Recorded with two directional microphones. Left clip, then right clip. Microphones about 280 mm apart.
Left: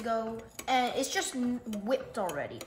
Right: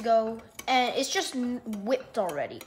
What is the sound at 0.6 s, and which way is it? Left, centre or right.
A woman's voice, right.